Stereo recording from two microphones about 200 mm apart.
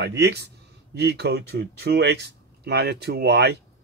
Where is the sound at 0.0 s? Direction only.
55° right (ahead or behind).